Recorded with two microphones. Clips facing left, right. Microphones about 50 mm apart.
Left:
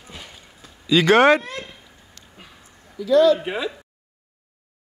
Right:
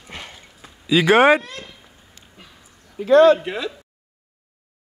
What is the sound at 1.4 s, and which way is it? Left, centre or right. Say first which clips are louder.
Speech: left 3 dB; left.